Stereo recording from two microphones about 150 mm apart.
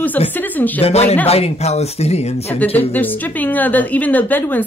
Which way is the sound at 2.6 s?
10° left (ahead or behind).